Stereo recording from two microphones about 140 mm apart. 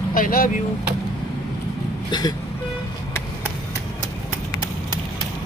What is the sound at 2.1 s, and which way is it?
Vehicle, 30° left (ahead or behind).